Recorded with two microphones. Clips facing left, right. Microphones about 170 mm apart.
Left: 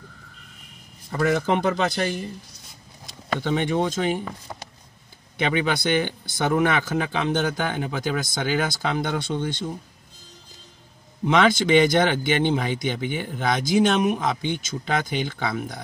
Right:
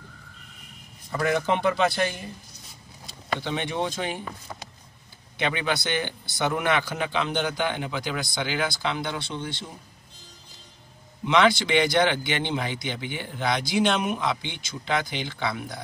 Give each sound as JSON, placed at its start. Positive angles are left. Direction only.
{"t": 1.6, "sound": "speech", "side_deg": 45}
{"t": 3.3, "sound": "speech", "side_deg": 50}
{"t": 5.7, "sound": "speech", "side_deg": 50}
{"t": 11.3, "sound": "speech", "side_deg": 50}